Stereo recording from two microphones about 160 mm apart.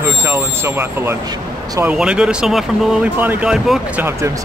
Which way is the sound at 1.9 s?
5° right (ahead or behind).